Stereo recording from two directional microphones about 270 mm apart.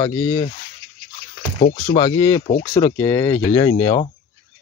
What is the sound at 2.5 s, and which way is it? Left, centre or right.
Speech, left.